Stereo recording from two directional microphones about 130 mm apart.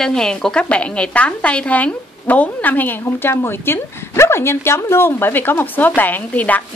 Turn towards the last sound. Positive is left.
turn(degrees=10)  # may be behind; listen again after turning